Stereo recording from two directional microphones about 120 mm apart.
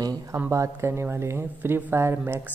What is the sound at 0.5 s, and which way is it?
A woman's voice, 25° right (ahead or behind).